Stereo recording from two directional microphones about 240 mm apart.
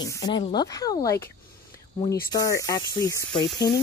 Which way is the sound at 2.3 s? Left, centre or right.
Centre.